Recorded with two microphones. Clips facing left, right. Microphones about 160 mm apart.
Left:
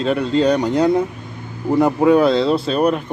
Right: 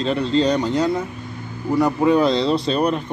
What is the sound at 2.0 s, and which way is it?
Speech, 10° left (ahead or behind).